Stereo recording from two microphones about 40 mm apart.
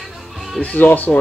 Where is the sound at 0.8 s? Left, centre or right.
Left.